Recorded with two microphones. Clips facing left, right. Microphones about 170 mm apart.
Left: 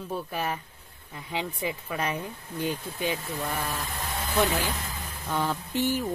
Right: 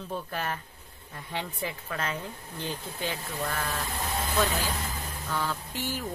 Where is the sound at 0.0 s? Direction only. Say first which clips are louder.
Left 2 dB; 10° left (ahead or behind).